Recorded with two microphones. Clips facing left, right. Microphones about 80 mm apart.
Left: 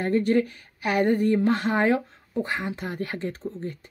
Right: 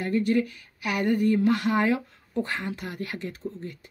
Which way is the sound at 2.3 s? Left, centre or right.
Centre.